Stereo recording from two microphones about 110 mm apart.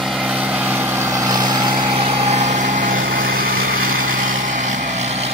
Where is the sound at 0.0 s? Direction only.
5° right (ahead or behind); by 2.6 s 90° right.